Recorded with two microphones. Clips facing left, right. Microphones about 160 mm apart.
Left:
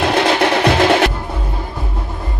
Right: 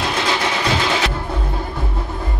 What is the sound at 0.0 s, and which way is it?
Music, 65° left (ahead or behind).